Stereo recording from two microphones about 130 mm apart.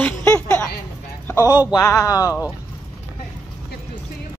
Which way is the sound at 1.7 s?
25° left (ahead or behind).